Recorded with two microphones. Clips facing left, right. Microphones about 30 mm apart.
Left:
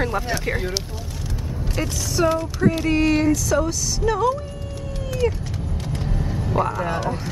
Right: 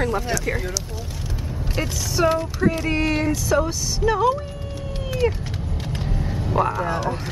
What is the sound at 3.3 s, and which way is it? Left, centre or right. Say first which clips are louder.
Speech: left 1 dB; centre.